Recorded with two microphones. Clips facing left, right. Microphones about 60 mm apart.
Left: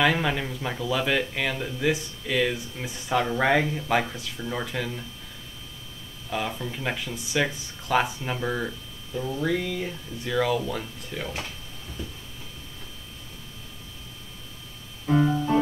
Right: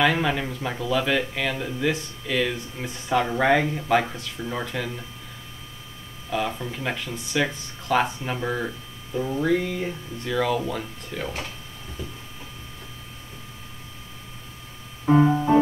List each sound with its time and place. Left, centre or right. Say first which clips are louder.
0.0 s speech: right 2 dB; centre
3.2 s speech: right 2 dB; centre
6.3 s speech: right 3 dB; centre
10.1 s speech: even; centre
15.0 s music: right 4 dB; right